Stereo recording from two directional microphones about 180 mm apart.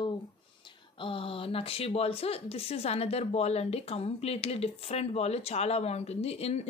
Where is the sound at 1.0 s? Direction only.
30° left (ahead or behind).